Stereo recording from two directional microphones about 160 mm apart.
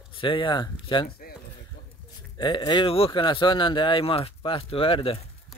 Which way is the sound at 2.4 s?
30° left (ahead or behind).